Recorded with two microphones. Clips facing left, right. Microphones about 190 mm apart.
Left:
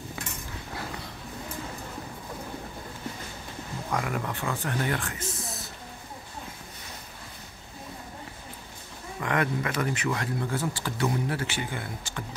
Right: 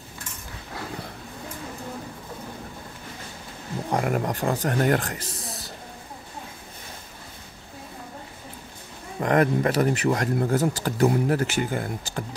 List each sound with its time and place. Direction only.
3.9 s speech: 45° right (ahead or behind)
9.2 s speech: 40° right (ahead or behind)